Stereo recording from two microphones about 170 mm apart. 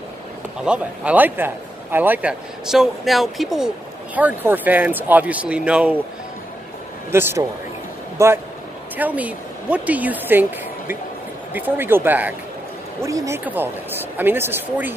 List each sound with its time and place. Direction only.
0.7 s a man's voice: 10° right (ahead or behind)
7.1 s a man's voice: 15° right (ahead or behind)
11.5 s a man's voice: 10° right (ahead or behind)